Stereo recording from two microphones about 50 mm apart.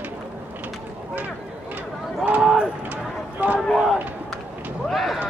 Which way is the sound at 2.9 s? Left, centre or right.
Right.